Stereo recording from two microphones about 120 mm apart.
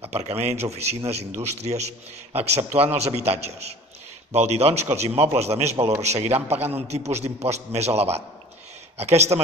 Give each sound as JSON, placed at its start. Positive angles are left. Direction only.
{"t": 0.0, "sound": "a man's voice", "side_deg": -60}
{"t": 5.8, "sound": "a man's voice", "side_deg": -25}
{"t": 6.0, "sound": "a man's voice", "side_deg": -60}